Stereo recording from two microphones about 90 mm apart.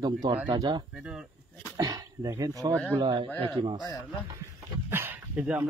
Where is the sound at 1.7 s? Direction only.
40° right (ahead or behind).